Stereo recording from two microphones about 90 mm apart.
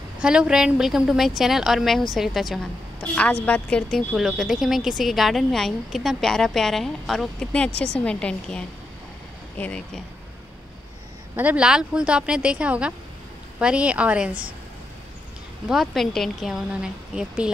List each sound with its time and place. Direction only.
0.2 s a woman's voice: 10° right (ahead or behind)
3.0 s a woman's voice: 15° left (ahead or behind)
3.9 s a woman's voice: 5° right (ahead or behind); by 9.8 s 15° left (ahead or behind)
11.3 s speech: 15° right (ahead or behind)
15.7 s a woman's voice: centre (ahead or behind)